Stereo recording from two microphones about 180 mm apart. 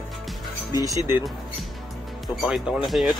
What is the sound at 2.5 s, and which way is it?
Speech, centre (ahead or behind).